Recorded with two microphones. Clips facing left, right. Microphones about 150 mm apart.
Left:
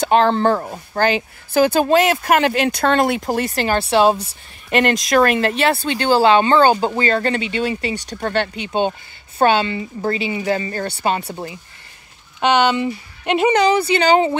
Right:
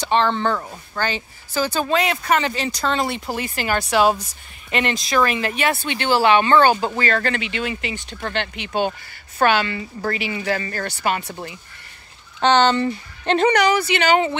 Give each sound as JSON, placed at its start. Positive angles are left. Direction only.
{"t": 0.0, "sound": "speech", "side_deg": 40}
{"t": 1.5, "sound": "speech", "side_deg": 55}
{"t": 4.6, "sound": "speech", "side_deg": 50}
{"t": 5.6, "sound": "speech", "side_deg": 35}
{"t": 8.6, "sound": "speech", "side_deg": 25}
{"t": 12.4, "sound": "speech", "side_deg": 10}
{"t": 13.5, "sound": "speech", "side_deg": 25}